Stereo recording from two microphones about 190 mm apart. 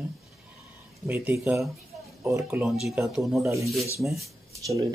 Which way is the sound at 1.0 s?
15° right (ahead or behind).